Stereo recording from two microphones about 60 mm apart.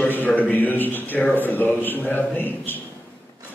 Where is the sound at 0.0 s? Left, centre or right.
Left.